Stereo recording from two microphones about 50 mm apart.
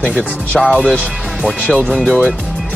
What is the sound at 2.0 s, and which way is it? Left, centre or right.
Speech, right.